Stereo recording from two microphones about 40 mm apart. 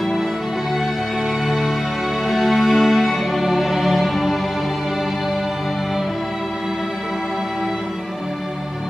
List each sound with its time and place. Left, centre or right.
2.2 s music: centre